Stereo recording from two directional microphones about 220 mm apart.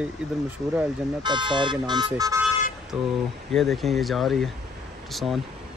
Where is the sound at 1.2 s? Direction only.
20° right (ahead or behind).